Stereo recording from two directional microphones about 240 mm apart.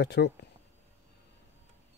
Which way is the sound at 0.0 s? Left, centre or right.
Left.